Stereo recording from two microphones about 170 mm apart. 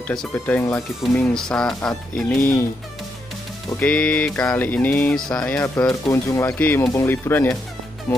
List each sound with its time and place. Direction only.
0.1 s speech: 5° left (ahead or behind)
3.8 s speech: 5° left (ahead or behind)
5.9 s speech: 20° left (ahead or behind)